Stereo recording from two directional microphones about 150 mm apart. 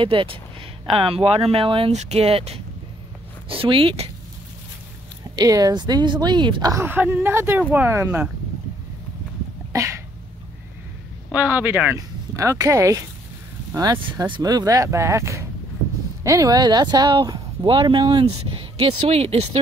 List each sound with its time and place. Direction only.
0.0 s speech: 35° right (ahead or behind)
5.3 s speech: 25° right (ahead or behind)
9.7 s cough: 20° right (ahead or behind)
11.3 s speech: 10° right (ahead or behind); by 19.6 s 40° right (ahead or behind)